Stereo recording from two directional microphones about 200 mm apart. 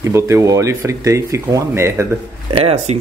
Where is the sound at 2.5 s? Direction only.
30° right (ahead or behind).